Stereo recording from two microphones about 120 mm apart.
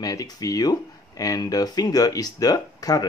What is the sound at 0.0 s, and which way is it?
Speech, 30° left (ahead or behind).